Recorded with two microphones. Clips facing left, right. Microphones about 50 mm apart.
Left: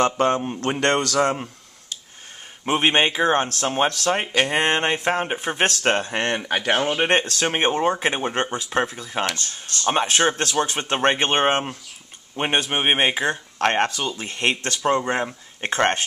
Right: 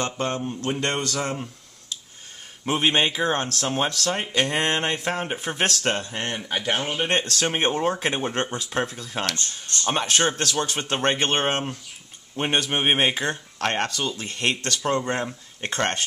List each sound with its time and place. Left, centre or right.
0.0 s mantra: left
0.6 s speech: left
2.6 s speech: centre
4.6 s speech: centre
6.0 s speech: left
7.1 s speech: centre